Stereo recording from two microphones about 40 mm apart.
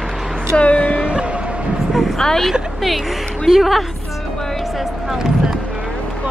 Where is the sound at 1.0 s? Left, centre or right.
Right.